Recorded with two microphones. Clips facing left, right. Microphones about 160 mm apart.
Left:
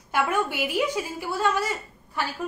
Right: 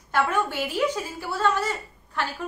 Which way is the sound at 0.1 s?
10° left (ahead or behind).